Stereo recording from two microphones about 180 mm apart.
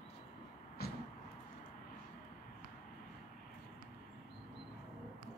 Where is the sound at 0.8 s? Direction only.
60° left (ahead or behind).